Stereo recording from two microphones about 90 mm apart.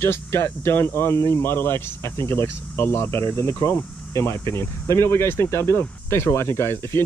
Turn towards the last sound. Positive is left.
turn(degrees=30)  # may be behind; listen again after turning